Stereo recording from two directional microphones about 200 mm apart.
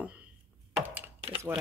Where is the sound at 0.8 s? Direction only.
10° right (ahead or behind).